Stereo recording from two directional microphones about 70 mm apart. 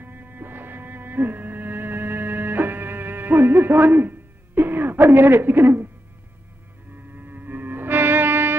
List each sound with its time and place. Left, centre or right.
0.0 s music: right
7.2 s music: right